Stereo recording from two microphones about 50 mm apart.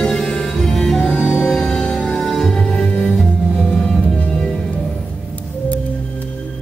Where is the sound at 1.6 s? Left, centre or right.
Centre.